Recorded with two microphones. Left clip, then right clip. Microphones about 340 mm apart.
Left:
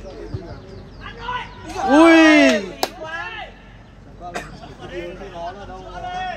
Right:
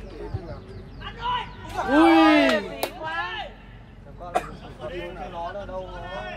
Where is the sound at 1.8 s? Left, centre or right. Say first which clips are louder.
Left 6 dB; left.